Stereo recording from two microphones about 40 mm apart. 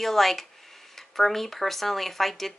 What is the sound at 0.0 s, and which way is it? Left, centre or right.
Speech, centre.